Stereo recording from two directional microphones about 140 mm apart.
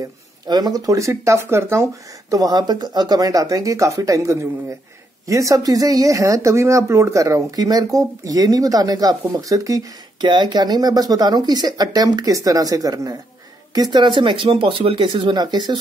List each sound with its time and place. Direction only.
0.5 s speech: 30° right (ahead or behind)